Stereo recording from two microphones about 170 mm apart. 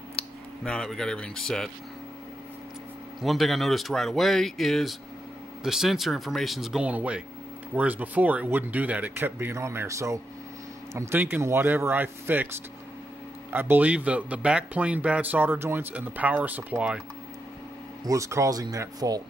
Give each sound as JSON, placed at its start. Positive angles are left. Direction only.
{"t": 0.7, "sound": "speech", "side_deg": 5}
{"t": 3.2, "sound": "speech", "side_deg": 0}
{"t": 13.5, "sound": "speech", "side_deg": -10}
{"t": 18.0, "sound": "speech", "side_deg": -20}